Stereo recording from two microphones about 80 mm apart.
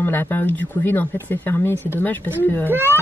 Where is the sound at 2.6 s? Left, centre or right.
Right.